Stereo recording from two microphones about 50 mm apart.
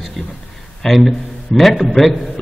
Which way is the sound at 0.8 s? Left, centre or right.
Centre.